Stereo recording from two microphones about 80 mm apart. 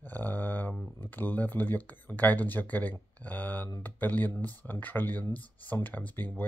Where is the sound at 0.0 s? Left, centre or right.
Left.